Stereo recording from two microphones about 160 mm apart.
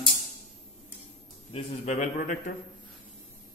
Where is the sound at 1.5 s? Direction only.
45° left (ahead or behind).